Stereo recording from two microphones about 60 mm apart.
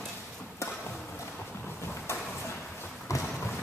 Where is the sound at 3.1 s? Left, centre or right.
Left.